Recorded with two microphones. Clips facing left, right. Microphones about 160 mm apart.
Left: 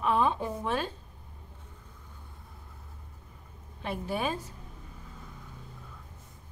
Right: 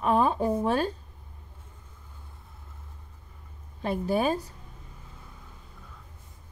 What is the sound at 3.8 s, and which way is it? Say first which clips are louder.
Speech: right 6 dB; 40° right (ahead or behind).